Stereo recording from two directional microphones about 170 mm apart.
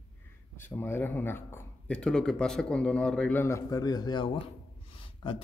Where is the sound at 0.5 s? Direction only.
15° left (ahead or behind).